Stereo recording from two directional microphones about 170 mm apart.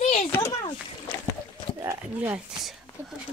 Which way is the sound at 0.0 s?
40° left (ahead or behind).